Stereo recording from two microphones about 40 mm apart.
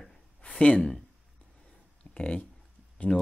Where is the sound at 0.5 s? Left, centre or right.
Left.